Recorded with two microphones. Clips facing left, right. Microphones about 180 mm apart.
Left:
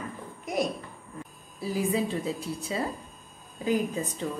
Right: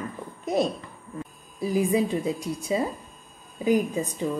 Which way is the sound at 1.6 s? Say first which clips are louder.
Right 5 dB; 15° right (ahead or behind).